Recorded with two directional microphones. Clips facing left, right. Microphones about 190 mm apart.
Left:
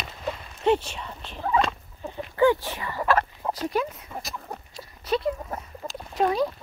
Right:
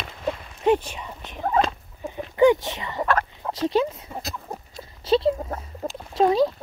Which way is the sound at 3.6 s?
25° right (ahead or behind).